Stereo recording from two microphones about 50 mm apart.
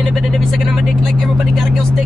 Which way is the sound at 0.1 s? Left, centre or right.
Centre.